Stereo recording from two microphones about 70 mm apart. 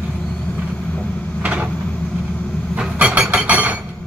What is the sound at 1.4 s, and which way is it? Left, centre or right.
Cupboard open or close, right.